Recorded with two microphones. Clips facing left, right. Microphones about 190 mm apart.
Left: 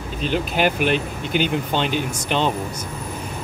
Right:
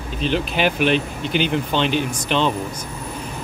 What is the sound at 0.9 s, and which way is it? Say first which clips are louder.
Speech: right 1 dB; 45° left (ahead or behind).